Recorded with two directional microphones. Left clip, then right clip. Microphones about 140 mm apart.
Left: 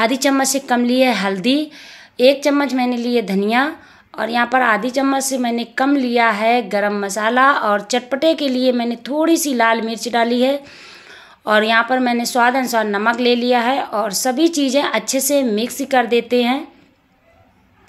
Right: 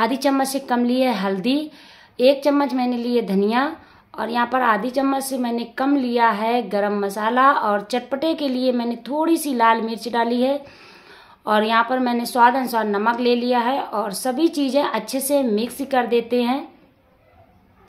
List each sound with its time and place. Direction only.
0.0 s a woman's voice: 20° left (ahead or behind)